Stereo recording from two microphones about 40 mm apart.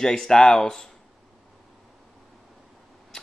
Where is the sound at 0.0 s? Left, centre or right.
Centre.